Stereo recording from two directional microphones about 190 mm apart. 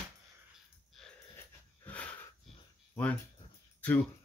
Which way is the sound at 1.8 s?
5° left (ahead or behind).